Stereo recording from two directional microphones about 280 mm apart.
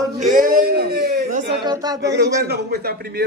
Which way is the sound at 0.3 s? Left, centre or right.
Right.